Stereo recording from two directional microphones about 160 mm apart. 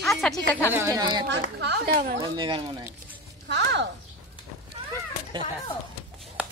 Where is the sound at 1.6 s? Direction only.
90° right.